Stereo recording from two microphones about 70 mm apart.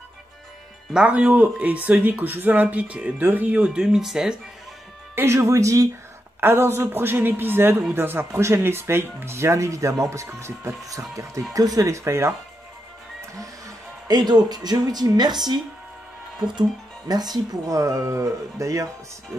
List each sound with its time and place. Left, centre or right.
0.9 s speech: centre
5.1 s speech: right
6.4 s a man's voice: right
10.9 s speech: right
13.3 s speech: right
17.1 s speech: right